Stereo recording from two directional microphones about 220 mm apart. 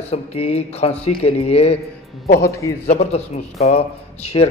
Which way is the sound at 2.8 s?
30° left (ahead or behind).